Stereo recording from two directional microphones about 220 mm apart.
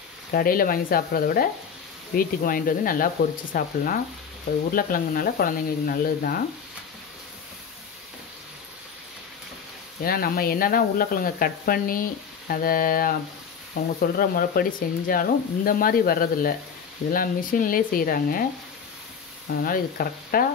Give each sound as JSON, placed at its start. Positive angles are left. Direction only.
{"t": 0.3, "sound": "speech", "side_deg": 40}
{"t": 10.0, "sound": "speech", "side_deg": 40}
{"t": 19.6, "sound": "speech", "side_deg": 40}